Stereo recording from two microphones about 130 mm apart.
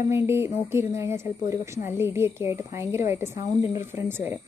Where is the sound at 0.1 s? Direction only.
20° right (ahead or behind).